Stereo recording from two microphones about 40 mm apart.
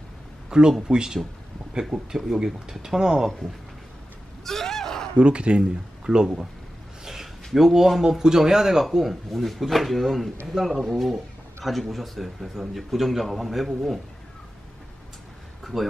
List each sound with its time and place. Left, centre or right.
0.5 s speech: centre
4.5 s a sound: centre
5.1 s speech: right
7.1 s a sound: centre
8.0 s speech: centre
15.6 s speech: centre